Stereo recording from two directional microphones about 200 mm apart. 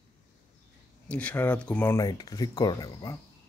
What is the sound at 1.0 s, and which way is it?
Speech, 5° left (ahead or behind).